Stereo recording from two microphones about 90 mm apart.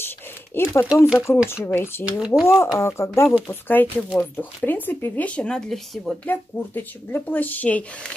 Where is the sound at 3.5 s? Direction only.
20° left (ahead or behind); by 6.2 s 5° left (ahead or behind).